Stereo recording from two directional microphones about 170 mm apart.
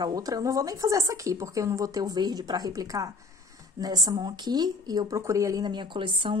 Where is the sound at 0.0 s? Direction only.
20° right (ahead or behind).